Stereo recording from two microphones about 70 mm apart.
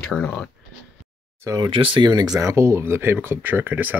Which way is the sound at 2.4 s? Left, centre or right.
Right.